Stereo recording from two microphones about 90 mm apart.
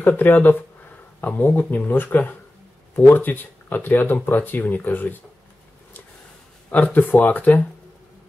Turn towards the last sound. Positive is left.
turn(degrees=20)  # may be behind; listen again after turning